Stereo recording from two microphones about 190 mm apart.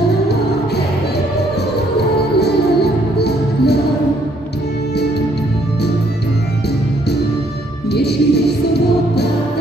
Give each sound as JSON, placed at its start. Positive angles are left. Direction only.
{"t": 2.0, "sound": "music", "side_deg": 60}
{"t": 7.9, "sound": "music", "side_deg": 60}